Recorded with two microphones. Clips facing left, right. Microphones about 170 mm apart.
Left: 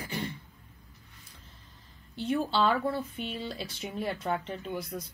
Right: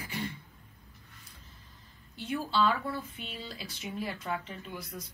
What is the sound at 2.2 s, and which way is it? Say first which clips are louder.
Speech: left 2 dB; 30° left (ahead or behind).